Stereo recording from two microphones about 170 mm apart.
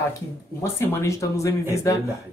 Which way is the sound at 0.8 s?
15° left (ahead or behind).